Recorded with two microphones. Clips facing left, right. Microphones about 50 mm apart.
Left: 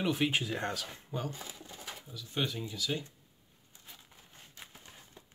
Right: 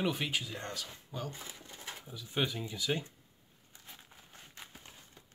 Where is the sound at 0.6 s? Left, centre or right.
Left.